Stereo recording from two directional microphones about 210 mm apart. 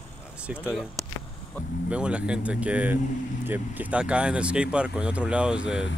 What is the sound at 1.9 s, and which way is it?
Speech, 5° right (ahead or behind).